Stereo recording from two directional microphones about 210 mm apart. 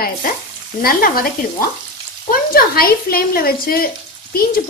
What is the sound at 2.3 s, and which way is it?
Speech, 45° left (ahead or behind).